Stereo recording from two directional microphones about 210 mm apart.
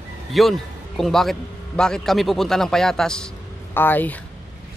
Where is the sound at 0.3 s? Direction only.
Centre (ahead or behind).